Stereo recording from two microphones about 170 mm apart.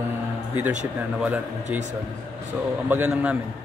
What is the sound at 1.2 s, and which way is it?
Speech, 5° right (ahead or behind).